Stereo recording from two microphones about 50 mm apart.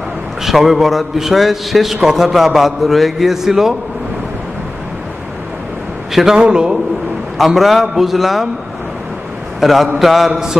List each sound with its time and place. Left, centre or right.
0.4 s a man's voice: centre
6.3 s a man's voice: centre
7.3 s a man's voice: centre
9.6 s a man's voice: centre